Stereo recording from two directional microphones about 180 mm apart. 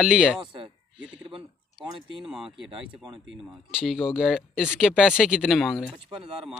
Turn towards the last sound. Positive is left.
turn(degrees=0)  # may be behind; listen again after turning